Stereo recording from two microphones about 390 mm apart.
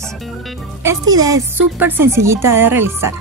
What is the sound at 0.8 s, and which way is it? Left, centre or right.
Speech, centre.